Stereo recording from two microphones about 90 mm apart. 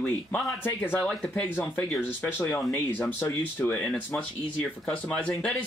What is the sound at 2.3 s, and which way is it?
Speech, 25° left (ahead or behind).